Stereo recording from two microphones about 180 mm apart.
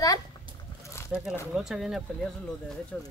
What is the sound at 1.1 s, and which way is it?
Speech, 10° right (ahead or behind).